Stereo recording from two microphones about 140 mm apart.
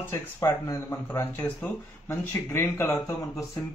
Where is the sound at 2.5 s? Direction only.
15° left (ahead or behind).